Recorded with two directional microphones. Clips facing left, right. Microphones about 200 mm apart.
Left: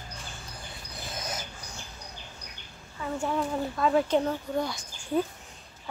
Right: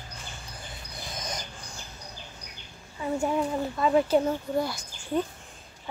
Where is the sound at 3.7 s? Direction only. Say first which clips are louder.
Right 2 dB; 5° right (ahead or behind).